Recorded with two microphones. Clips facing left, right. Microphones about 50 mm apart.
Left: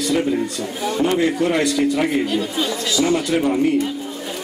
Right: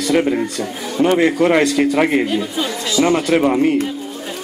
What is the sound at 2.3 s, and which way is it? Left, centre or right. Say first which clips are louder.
Speech: right 1 dB; centre.